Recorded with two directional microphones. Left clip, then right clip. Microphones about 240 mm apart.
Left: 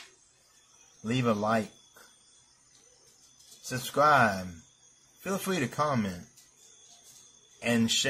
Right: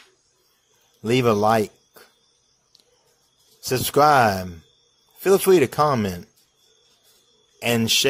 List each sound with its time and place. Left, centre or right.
1.0 s speech: right
3.6 s speech: right
7.5 s speech: right